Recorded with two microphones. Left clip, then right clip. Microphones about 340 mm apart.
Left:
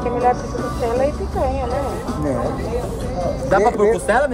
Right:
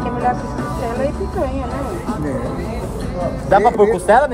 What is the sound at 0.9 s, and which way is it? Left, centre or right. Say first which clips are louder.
Music: left 3 dB; left.